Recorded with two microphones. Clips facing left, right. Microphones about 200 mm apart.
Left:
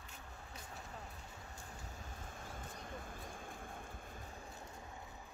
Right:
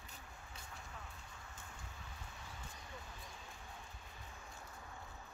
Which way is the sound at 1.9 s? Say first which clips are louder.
Left 4 dB; 50° left (ahead or behind).